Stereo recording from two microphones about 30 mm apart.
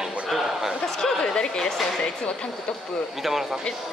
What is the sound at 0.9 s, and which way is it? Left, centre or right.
Speech, left.